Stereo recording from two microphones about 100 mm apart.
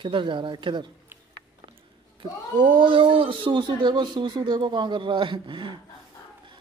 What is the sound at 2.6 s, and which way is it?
A man's voice, 55° right (ahead or behind).